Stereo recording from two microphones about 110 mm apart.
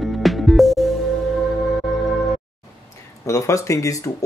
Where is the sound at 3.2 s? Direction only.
25° left (ahead or behind).